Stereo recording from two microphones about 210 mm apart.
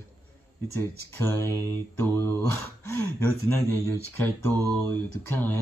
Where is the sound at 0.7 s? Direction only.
10° left (ahead or behind).